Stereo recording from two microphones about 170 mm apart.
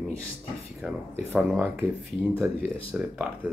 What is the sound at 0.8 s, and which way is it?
Speech, centre (ahead or behind).